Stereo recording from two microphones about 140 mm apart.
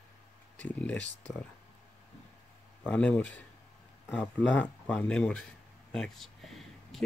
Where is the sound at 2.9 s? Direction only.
10° left (ahead or behind).